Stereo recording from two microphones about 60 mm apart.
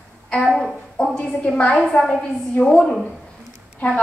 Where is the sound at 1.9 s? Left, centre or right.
Centre.